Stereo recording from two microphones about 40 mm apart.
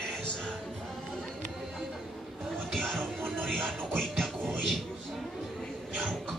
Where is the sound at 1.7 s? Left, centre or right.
Centre.